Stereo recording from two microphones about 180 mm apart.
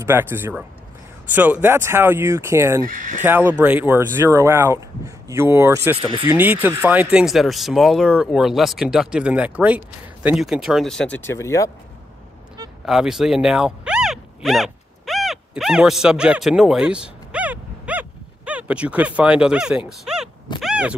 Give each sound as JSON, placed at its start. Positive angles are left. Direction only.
{"t": 0.0, "sound": "speech", "side_deg": -10}
{"t": 12.8, "sound": "zipper", "side_deg": 0}
{"t": 19.9, "sound": "a sound", "side_deg": 0}